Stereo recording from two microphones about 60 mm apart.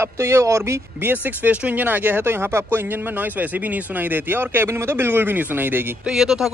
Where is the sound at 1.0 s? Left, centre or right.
Right.